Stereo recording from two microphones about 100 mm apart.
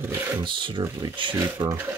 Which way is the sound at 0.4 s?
55° right (ahead or behind).